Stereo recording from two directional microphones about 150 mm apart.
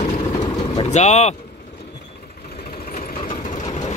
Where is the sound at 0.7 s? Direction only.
40° left (ahead or behind).